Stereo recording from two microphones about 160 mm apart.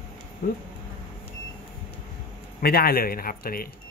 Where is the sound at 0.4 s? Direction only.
70° left (ahead or behind).